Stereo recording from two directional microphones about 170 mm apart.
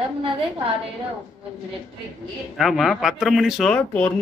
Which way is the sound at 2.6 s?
Centre (ahead or behind).